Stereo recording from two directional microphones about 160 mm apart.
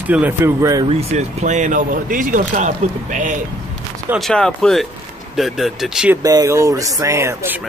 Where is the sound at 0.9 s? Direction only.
40° right (ahead or behind).